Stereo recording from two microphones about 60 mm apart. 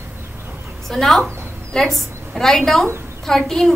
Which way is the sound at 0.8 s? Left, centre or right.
Centre.